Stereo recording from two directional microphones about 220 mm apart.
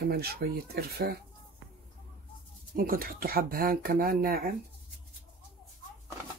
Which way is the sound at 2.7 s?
40° right (ahead or behind).